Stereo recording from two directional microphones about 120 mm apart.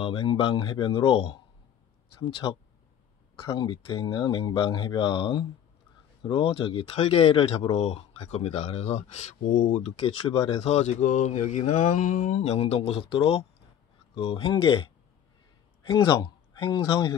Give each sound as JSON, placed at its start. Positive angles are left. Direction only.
{"t": 0.0, "sound": "speech", "side_deg": 50}
{"t": 3.5, "sound": "speech", "side_deg": 45}
{"t": 9.9, "sound": "speech", "side_deg": 50}
{"t": 12.5, "sound": "speech", "side_deg": 60}